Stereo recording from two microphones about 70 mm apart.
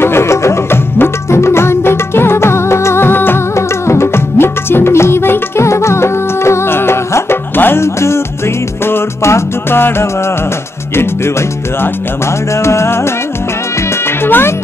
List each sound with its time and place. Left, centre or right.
0.0 s music: left
12.6 s music: left
14.2 s music: left